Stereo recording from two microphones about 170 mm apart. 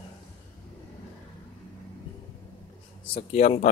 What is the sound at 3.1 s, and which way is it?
Speech, 40° left (ahead or behind).